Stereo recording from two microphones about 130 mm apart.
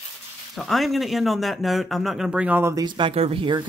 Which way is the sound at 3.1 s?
50° right (ahead or behind).